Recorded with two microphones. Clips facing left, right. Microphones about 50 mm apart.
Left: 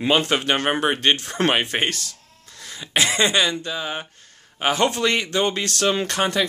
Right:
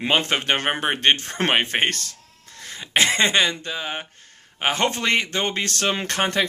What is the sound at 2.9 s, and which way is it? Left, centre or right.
Speech, right.